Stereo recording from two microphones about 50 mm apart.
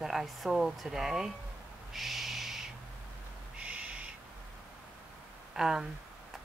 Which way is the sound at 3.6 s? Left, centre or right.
Right.